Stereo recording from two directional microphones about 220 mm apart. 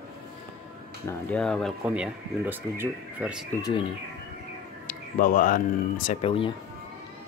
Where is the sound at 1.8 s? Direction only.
5° right (ahead or behind).